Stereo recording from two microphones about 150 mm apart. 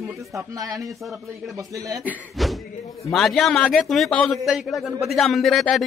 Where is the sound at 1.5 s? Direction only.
25° right (ahead or behind).